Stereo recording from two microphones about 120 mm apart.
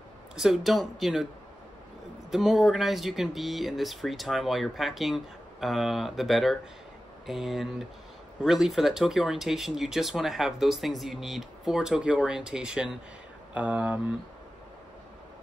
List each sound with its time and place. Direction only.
0.4 s speech: centre (ahead or behind)
2.3 s speech: centre (ahead or behind)